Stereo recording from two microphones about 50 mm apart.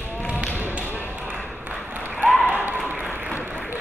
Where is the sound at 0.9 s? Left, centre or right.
Right.